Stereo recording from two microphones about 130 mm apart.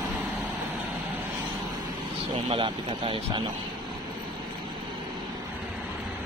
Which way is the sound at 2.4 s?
40° right (ahead or behind).